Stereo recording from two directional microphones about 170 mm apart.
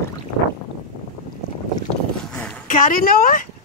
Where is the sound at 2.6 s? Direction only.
50° left (ahead or behind).